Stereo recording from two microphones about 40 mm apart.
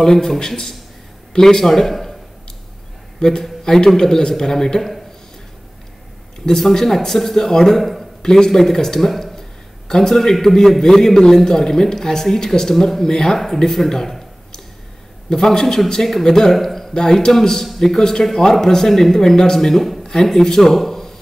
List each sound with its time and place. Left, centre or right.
0.0 s a man's voice: centre
3.2 s a man's voice: centre
6.4 s a man's voice: centre
9.1 s a sound: centre
9.8 s a man's voice: centre
15.2 s a man's voice: centre
20.7 s a sound: centre